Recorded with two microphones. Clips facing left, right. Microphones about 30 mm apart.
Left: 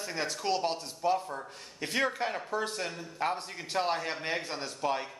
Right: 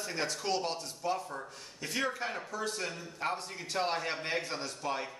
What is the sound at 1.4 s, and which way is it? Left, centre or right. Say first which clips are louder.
Speech: left 3 dB; left.